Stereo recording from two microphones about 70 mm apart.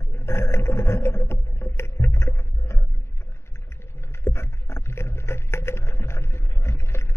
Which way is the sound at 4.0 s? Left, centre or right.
Left.